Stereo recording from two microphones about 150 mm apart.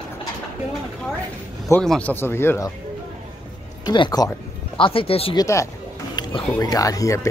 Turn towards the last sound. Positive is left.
turn(degrees=20)  # may be behind; listen again after turning